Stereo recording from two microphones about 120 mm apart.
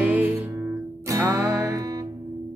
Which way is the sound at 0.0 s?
10° right (ahead or behind).